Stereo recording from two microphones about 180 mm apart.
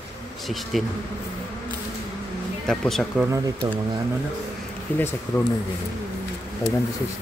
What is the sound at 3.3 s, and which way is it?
Speech, 15° right (ahead or behind).